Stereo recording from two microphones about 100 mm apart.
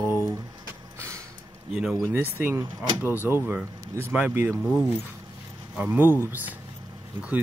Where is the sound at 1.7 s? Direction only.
5° right (ahead or behind).